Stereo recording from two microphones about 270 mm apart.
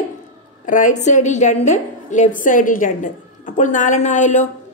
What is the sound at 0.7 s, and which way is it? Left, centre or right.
Speech, left.